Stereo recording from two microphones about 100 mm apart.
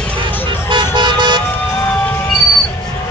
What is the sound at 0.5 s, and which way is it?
Vehicle, 50° right (ahead or behind).